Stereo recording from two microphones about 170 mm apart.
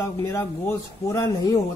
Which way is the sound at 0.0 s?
15° left (ahead or behind).